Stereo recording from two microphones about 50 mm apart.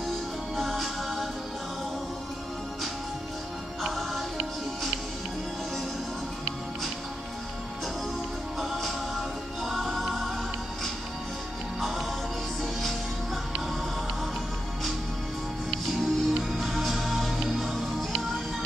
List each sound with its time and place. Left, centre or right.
0.6 s music: centre
3.8 s music: centre
8.5 s music: centre
11.8 s music: centre
15.7 s music: centre